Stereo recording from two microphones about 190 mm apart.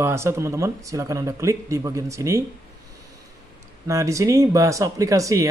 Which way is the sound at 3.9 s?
15° right (ahead or behind).